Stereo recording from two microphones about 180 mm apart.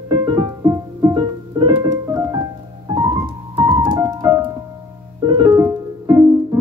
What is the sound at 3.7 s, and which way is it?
Music, 25° right (ahead or behind).